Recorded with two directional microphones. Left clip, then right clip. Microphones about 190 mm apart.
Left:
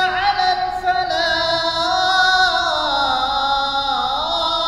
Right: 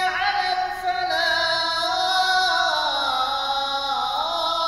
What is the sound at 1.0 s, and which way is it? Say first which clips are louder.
Music: left 3 dB; 25° left (ahead or behind).